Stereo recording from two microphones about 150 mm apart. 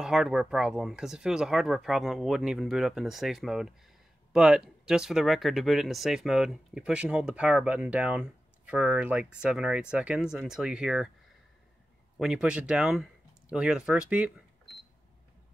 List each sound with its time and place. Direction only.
0.0 s speech: 5° right (ahead or behind)
12.2 s speech: 5° right (ahead or behind)